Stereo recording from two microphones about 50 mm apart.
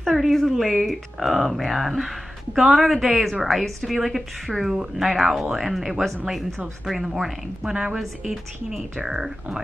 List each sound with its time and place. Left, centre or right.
0.0 s speech: centre
7.7 s speech: centre
8.7 s speech: centre